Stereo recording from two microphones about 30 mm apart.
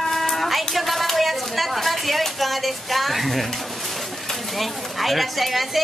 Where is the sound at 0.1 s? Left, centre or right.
Centre.